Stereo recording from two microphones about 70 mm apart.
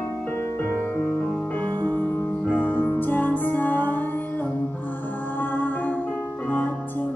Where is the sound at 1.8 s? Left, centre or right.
Left.